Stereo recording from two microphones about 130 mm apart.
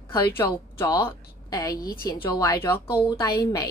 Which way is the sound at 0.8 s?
35° left (ahead or behind).